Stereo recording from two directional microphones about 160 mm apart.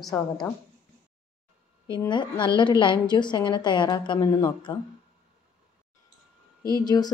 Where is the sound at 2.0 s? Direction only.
30° left (ahead or behind).